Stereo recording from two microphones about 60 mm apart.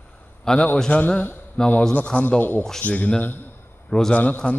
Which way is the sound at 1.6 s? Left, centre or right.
Centre.